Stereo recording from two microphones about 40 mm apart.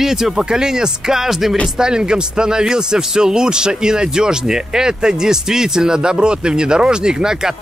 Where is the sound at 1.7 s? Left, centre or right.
Centre.